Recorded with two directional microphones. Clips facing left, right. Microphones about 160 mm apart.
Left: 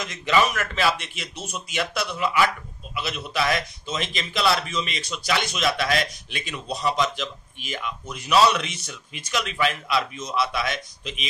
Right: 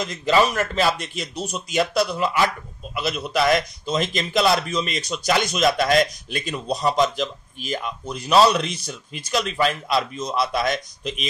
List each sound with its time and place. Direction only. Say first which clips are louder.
0.0 s speech: right 3 dB; 35° right (ahead or behind)